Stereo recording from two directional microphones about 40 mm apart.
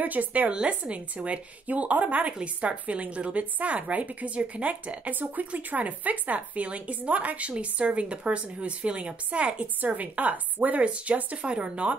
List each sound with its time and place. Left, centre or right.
0.0 s speech: right
0.5 s speech: right
9.8 s speech: right